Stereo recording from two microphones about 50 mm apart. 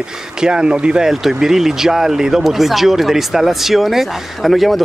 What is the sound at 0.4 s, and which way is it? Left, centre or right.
Speech, centre.